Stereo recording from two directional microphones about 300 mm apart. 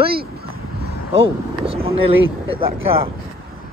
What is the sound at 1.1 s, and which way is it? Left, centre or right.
Speech, centre.